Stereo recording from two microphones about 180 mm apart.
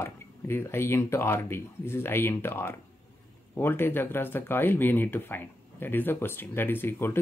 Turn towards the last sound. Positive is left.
turn(degrees=15)  # may be behind; listen again after turning